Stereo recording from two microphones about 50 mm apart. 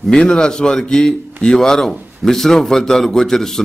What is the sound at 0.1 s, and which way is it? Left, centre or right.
A man's voice, centre.